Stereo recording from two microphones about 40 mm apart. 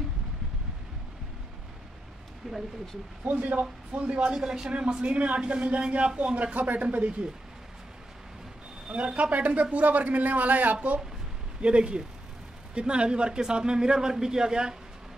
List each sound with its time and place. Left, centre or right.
2.4 s speech: centre
3.3 s a man's voice: right
4.5 s a man's voice: centre; by 7.2 s right
8.9 s a man's voice: right
11.6 s a man's voice: right